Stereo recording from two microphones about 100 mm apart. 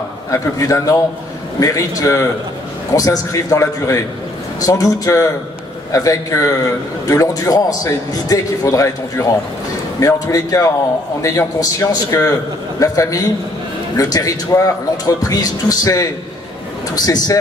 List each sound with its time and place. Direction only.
0.3 s a man's voice: 30° left (ahead or behind)